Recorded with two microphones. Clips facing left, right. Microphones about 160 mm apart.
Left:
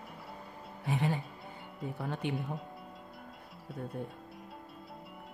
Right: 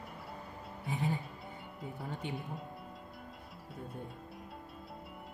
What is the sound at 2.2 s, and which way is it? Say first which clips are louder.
Speech: left 6 dB; 70° left (ahead or behind).